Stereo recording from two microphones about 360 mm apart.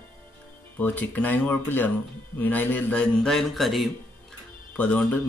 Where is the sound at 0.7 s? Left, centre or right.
Centre.